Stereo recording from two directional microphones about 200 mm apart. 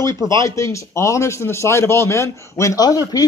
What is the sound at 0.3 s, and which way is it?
Speech, 15° left (ahead or behind).